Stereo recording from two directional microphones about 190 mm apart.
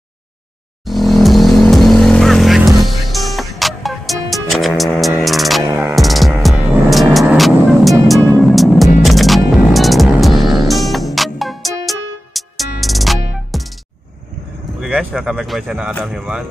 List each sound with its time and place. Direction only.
0.8 s vehicle: centre (ahead or behind)
5.6 s music: 20° right (ahead or behind)
5.9 s music: centre (ahead or behind)
14.8 s a sound: 5° right (ahead or behind)
15.9 s speech: centre (ahead or behind)